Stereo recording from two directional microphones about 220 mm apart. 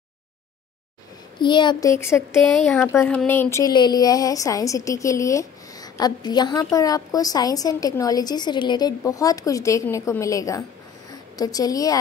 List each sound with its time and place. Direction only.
1.4 s a woman's voice: 20° left (ahead or behind)
2.4 s speech: centre (ahead or behind)
2.9 s a woman's voice: 10° left (ahead or behind)